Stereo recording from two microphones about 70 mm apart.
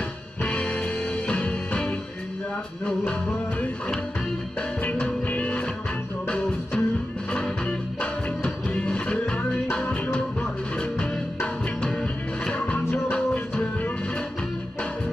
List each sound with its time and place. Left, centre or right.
0.5 s music: centre
4.6 s music: centre
12.0 s music: centre